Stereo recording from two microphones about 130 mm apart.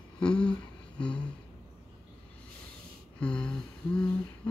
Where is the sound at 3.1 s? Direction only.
5° left (ahead or behind).